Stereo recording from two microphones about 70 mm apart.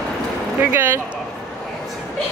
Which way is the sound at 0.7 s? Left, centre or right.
Right.